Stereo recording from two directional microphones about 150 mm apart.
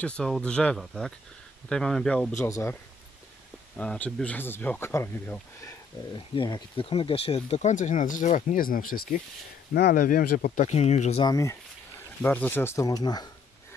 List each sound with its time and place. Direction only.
0.0 s speech: 5° left (ahead or behind)
2.3 s speech: 20° left (ahead or behind)
6.1 s speech: 30° left (ahead or behind); by 11.2 s 45° left (ahead or behind)
11.2 s speech: 20° left (ahead or behind)
12.2 s speech: 10° left (ahead or behind)